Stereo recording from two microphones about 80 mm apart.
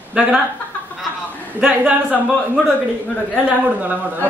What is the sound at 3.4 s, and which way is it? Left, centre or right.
Speech, right.